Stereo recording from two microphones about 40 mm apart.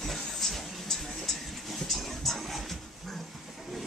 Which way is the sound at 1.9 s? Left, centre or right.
Centre.